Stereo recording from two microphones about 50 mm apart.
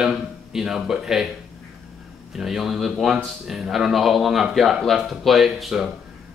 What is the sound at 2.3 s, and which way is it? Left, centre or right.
A man's voice, centre.